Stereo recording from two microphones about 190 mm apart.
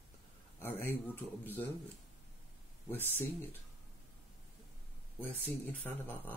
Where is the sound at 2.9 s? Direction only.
10° left (ahead or behind).